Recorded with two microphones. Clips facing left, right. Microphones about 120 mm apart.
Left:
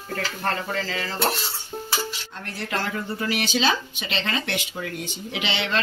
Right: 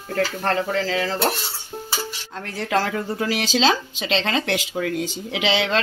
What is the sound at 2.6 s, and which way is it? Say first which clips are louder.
Speech: right 6 dB; 90° right.